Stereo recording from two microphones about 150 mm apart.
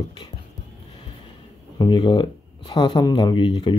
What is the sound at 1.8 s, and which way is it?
Speech, 35° left (ahead or behind).